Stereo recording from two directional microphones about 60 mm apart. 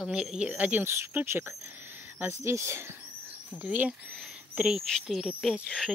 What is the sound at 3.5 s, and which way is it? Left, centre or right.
Speech, right.